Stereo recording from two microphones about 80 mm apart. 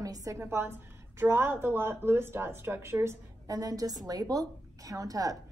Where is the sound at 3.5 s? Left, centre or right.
Right.